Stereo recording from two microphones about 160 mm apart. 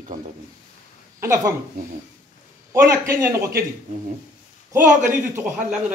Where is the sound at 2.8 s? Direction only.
15° right (ahead or behind).